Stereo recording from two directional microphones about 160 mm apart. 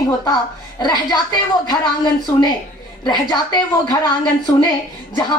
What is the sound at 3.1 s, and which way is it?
Speech, 25° left (ahead or behind).